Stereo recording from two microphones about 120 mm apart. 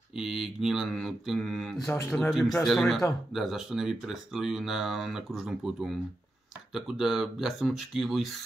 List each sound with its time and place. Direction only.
0.2 s speech: centre (ahead or behind)
1.9 s speech: 15° left (ahead or behind)
2.1 s speech: centre (ahead or behind)